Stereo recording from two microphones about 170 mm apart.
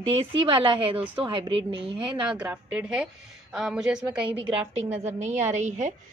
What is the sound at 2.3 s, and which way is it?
A woman's voice, 10° right (ahead or behind).